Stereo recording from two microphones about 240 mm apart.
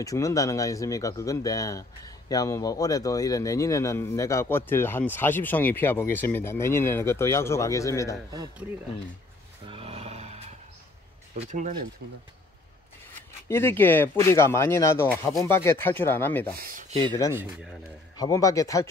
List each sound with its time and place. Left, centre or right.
0.0 s speech: centre
9.7 s grunt: right
11.3 s speech: right
13.5 s speech: centre
16.5 s a sound: right
18.1 s speech: centre